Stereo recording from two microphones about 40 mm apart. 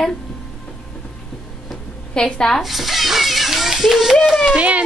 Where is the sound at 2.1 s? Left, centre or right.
Centre.